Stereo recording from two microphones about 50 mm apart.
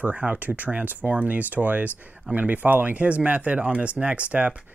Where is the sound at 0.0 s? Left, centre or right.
Right.